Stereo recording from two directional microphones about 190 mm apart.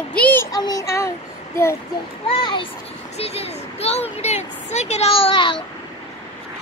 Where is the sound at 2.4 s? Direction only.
25° left (ahead or behind).